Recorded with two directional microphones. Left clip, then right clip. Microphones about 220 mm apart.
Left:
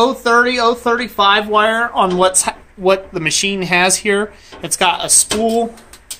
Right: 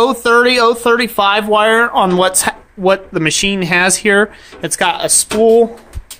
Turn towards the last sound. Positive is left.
turn(degrees=-25)  # may be behind; listen again after turning